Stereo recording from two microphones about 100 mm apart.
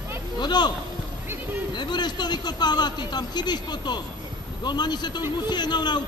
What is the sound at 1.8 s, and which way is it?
Speech, 45° left (ahead or behind).